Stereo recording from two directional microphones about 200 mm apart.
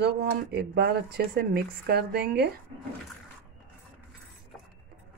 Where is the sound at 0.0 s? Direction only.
50° right (ahead or behind).